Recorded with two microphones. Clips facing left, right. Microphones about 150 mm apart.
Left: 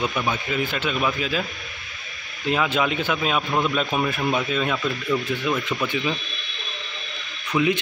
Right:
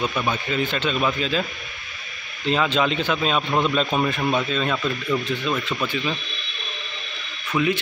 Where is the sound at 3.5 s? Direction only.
20° right (ahead or behind).